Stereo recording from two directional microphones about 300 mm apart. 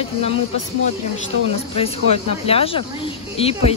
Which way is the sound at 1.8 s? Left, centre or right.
Centre.